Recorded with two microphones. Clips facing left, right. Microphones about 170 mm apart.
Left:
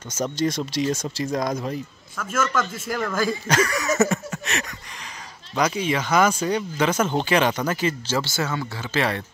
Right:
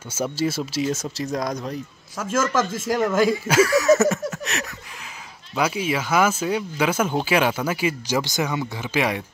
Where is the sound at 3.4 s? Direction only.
5° right (ahead or behind).